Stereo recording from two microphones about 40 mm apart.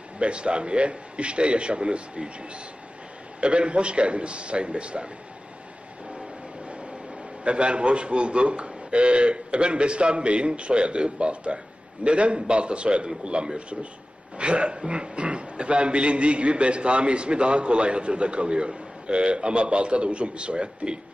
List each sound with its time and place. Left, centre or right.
0.2 s speech: right
3.3 s speech: right
7.4 s speech: right